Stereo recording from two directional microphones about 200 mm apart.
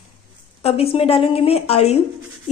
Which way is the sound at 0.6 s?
30° left (ahead or behind).